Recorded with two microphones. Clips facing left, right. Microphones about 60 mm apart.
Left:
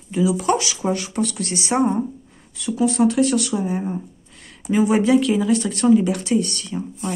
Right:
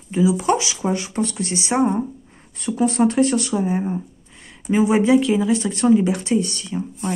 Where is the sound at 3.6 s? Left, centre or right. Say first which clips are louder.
Right 2 dB; centre.